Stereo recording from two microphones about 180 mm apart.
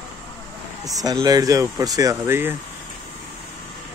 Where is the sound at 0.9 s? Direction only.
20° right (ahead or behind).